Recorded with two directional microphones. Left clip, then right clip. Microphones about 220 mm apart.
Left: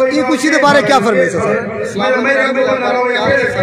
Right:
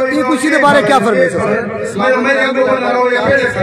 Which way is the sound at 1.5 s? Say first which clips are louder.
Even; 55° right (ahead or behind).